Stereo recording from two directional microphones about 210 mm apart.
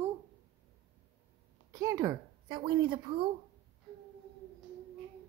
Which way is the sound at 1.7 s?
15° right (ahead or behind).